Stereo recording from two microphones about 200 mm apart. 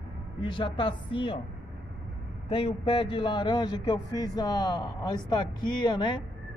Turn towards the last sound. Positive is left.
turn(degrees=20)  # may be behind; listen again after turning